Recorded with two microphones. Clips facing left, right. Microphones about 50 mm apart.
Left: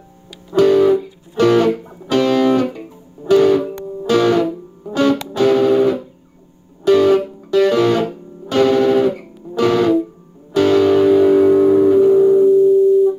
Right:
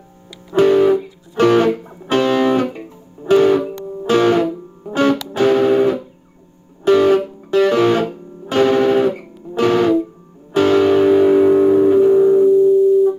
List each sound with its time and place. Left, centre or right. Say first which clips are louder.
0.5 s music: even; right; by 12.7 s centre